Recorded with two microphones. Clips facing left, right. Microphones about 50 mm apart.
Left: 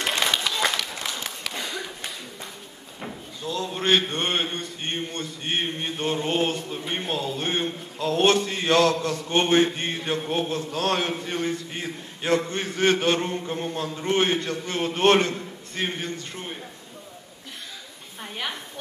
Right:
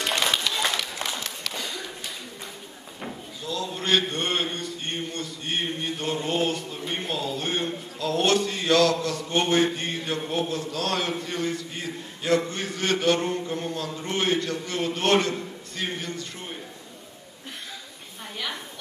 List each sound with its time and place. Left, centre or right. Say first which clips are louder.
0.4 s run: left 2 dB; centre
1.5 s a sound: left 2 dB; left
3.4 s a man's voice: left 3 dB; left